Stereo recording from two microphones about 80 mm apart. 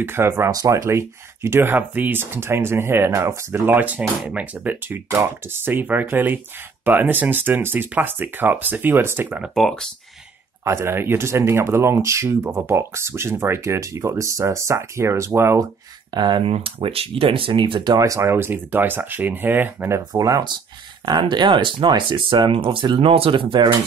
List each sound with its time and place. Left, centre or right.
0.0 s speech: right
0.5 s speech: right
5.1 s speech: right
9.6 s speech: centre
10.6 s speech: right
16.2 s speech: right
17.9 s speech: right
18.2 s speech: right
20.1 s speech: right
21.0 s speech: right